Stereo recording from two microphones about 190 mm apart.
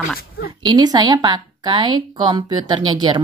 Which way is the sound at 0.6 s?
20° right (ahead or behind).